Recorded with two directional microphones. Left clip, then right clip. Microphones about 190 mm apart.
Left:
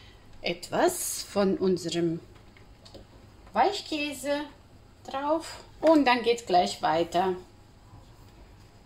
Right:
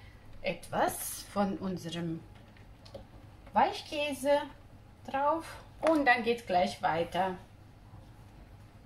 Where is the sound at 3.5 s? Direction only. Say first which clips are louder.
Left 3 dB; 40° left (ahead or behind).